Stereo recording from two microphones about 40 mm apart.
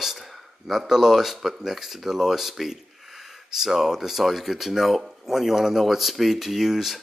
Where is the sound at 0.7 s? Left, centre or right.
Centre.